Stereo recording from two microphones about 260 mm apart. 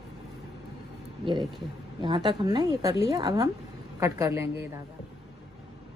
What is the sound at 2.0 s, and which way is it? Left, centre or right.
A woman's voice, centre.